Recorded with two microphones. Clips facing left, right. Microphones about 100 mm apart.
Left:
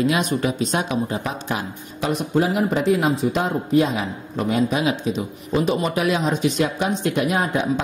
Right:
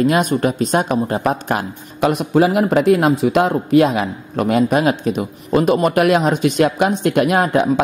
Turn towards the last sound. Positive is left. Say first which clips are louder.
# right 6 dB
turn(degrees=-65)  # may be behind; listen again after turning